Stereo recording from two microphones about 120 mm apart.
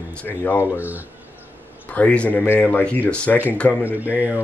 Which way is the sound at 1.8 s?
10° left (ahead or behind).